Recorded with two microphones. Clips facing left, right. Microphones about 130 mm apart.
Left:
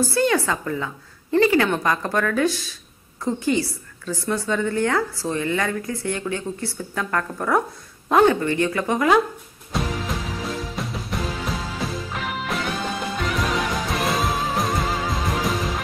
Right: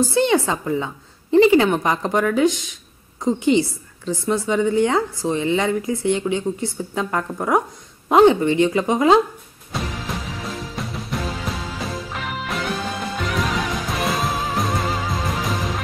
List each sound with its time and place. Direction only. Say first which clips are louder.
0.0 s a woman's voice: right 3 dB; 20° right (ahead or behind)
9.7 s music: left 2 dB; centre (ahead or behind)